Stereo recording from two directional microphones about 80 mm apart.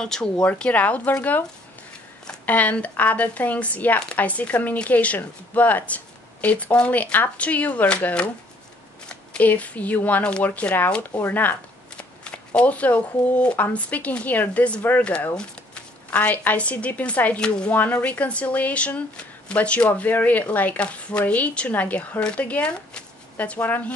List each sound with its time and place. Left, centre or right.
0.0 s a woman's voice: centre
2.4 s a woman's voice: centre